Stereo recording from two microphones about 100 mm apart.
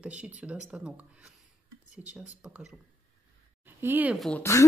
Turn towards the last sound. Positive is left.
turn(degrees=30)  # may be behind; listen again after turning